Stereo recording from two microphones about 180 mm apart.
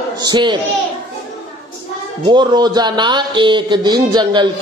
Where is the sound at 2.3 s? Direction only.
25° right (ahead or behind).